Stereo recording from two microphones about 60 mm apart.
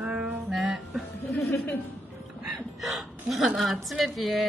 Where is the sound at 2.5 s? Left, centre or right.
Centre.